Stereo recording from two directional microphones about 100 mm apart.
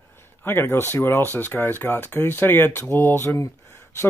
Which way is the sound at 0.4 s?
25° left (ahead or behind).